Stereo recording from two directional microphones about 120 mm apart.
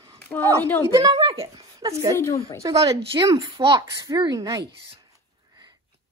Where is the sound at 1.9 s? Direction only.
30° right (ahead or behind).